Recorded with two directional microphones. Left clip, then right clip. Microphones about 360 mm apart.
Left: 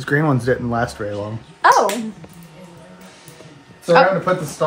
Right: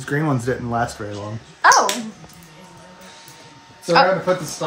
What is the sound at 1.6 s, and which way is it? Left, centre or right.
Dog, centre.